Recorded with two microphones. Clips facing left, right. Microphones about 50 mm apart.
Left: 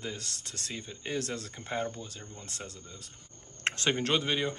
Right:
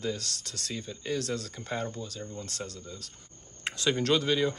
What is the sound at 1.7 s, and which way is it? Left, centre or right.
Speech, centre.